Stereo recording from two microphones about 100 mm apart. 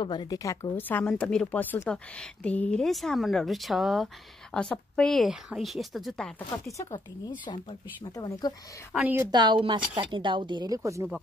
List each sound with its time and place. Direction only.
0.0 s speech: 50° left (ahead or behind)
0.3 s a woman's voice: 35° left (ahead or behind)
0.7 s a woman's voice: 15° left (ahead or behind)
2.8 s a woman's voice: centre (ahead or behind)
4.6 s a woman's voice: 10° left (ahead or behind)
6.5 s a woman's voice: 30° left (ahead or behind)
7.4 s speech: 45° left (ahead or behind)
9.0 s a woman's voice: 20° right (ahead or behind)
9.3 s speech: 45° right (ahead or behind)
10.8 s speech: 30° right (ahead or behind)